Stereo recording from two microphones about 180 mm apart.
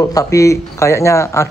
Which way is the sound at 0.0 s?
20° left (ahead or behind).